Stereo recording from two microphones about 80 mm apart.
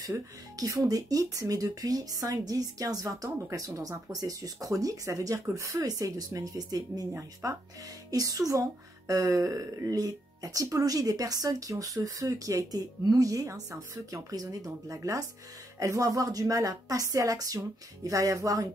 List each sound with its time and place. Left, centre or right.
0.6 s speech: right